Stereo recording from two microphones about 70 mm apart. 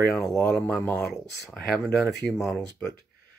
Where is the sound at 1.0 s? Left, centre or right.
Centre.